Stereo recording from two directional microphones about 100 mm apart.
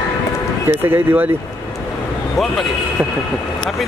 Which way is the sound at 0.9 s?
20° right (ahead or behind).